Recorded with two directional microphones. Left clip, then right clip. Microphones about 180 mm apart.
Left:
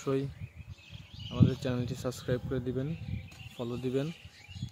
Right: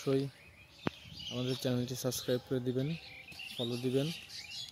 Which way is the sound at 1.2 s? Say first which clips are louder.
Left 3 dB; 5° right (ahead or behind).